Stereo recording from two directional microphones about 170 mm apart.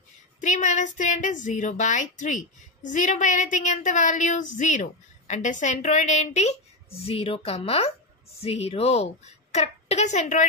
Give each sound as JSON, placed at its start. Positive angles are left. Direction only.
{"t": 0.4, "sound": "a woman's voice", "side_deg": 45}